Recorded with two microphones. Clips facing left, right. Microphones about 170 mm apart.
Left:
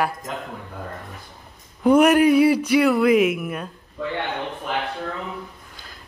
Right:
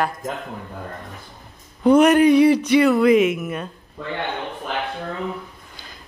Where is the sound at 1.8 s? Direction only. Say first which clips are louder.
Right 1 dB; 10° left (ahead or behind).